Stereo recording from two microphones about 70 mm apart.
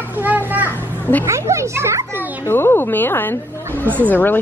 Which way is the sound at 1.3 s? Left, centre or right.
Right.